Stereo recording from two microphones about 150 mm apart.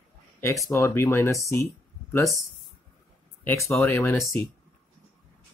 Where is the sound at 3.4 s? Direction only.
20° left (ahead or behind).